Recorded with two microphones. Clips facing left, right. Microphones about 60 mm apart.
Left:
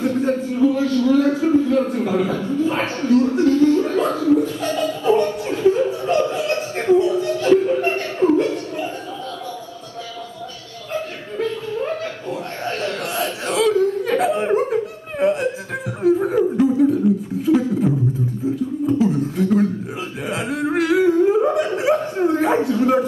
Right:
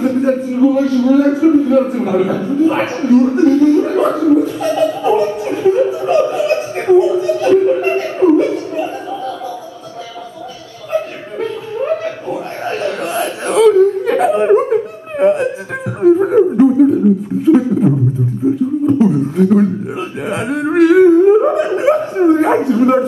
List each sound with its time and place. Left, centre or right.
0.0 s a man's voice: centre
10.9 s chuckle: centre
14.4 s laughter: centre
16.2 s chuckle: right
17.5 s a sound: centre
18.9 s beatboxing: centre
20.2 s a sound: centre